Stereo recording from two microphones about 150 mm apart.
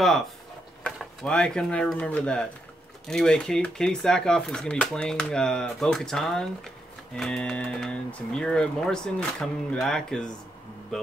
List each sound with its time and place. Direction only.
0.8 s speech: 5° left (ahead or behind)